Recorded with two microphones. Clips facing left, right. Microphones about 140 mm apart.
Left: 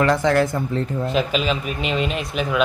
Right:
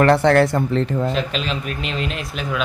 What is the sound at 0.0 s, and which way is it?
Speech, 65° right (ahead or behind).